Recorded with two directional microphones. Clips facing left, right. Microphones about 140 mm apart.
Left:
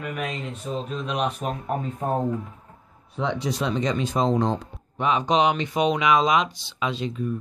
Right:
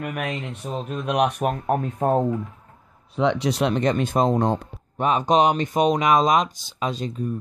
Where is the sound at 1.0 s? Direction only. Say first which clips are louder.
Right 7 dB; 65° right (ahead or behind).